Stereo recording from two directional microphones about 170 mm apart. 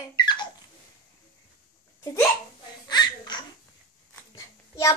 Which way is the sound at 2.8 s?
25° left (ahead or behind).